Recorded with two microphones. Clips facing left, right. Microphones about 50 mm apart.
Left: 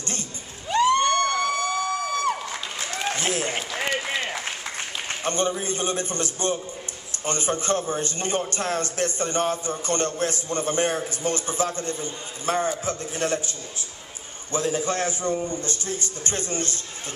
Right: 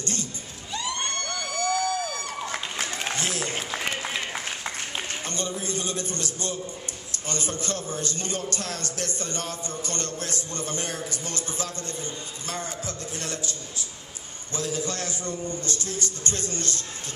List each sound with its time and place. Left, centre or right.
0.0 s crowd: left
0.7 s a sound: left
3.2 s applause: left
3.7 s applause: centre
5.2 s a man's voice: left